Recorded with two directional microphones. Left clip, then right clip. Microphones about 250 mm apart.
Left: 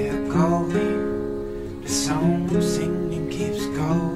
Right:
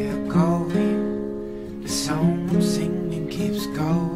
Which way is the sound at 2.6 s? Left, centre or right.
Right.